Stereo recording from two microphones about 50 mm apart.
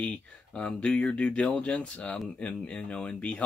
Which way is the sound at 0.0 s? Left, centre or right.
Left.